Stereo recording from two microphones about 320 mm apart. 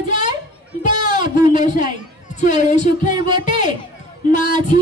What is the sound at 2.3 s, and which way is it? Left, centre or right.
Speech, left.